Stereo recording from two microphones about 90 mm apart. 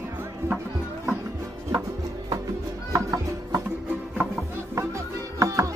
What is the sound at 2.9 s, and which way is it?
Music, 40° right (ahead or behind).